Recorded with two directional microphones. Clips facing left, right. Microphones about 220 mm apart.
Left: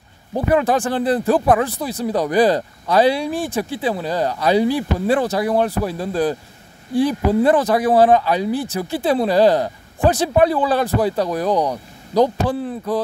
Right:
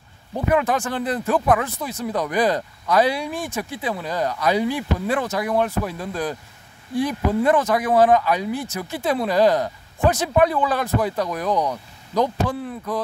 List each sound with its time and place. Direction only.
0.3 s speech: 35° left (ahead or behind)